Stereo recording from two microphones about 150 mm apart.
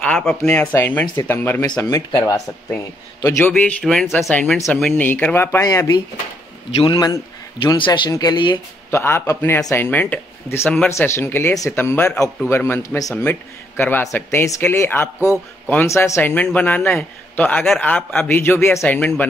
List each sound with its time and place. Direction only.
0.0 s a man's voice: 5° left (ahead or behind); by 8.5 s 30° left (ahead or behind)
8.9 s a man's voice: 15° left (ahead or behind)
15.1 s a man's voice: 10° right (ahead or behind)
15.7 s a man's voice: 15° left (ahead or behind)